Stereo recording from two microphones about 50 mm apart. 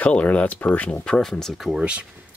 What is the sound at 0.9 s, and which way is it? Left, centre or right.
Speech, centre.